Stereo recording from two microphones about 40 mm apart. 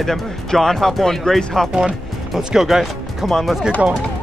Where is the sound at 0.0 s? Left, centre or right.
Centre.